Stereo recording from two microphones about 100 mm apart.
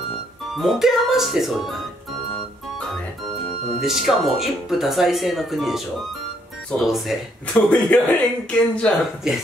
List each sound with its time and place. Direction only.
0.6 s speech: 5° right (ahead or behind)
3.8 s speech: 5° right (ahead or behind)
6.8 s speech: 5° right (ahead or behind)
7.5 s speech: 15° left (ahead or behind)
9.3 s speech: 5° right (ahead or behind)